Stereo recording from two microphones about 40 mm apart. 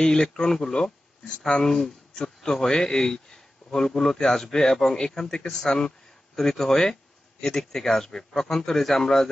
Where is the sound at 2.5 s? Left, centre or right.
Centre.